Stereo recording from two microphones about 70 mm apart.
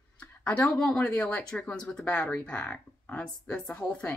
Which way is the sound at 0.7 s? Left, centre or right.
Centre.